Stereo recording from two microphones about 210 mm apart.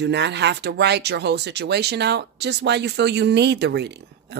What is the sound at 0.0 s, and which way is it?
Speech, 55° right (ahead or behind).